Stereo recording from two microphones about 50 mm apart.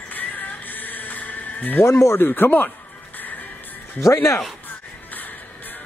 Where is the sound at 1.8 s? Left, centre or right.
Left.